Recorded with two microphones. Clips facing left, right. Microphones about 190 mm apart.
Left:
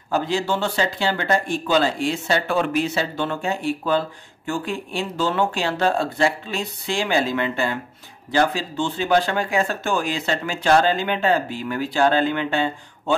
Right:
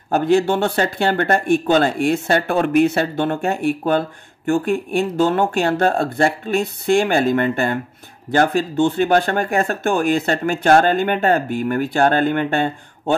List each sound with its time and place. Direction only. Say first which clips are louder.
0.1 s speech: right 7 dB; 55° right (ahead or behind)